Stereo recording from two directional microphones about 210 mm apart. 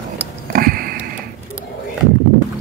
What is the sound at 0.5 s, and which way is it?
Sniff, 45° right (ahead or behind).